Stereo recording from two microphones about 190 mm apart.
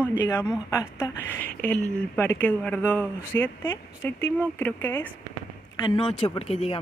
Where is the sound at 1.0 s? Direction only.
10° left (ahead or behind).